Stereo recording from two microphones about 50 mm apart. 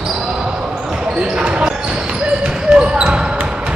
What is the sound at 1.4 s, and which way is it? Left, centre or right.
Speech, centre.